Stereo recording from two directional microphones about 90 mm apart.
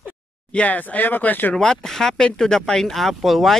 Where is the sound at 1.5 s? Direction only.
5° left (ahead or behind).